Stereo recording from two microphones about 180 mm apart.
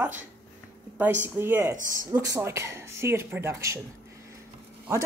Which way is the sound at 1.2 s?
10° right (ahead or behind).